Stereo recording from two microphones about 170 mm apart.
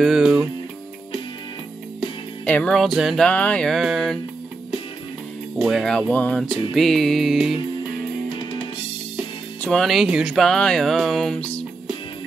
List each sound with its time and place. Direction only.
0.0 s music: 5° right (ahead or behind)
2.4 s speech: 10° left (ahead or behind)
5.6 s speech: centre (ahead or behind)
8.4 s drum kit: 30° left (ahead or behind)
9.6 s speech: 5° left (ahead or behind)